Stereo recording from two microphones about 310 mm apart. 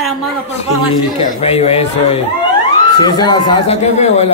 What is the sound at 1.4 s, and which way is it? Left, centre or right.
Speech, centre.